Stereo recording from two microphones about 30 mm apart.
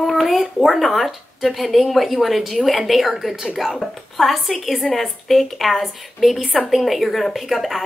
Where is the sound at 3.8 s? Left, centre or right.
Centre.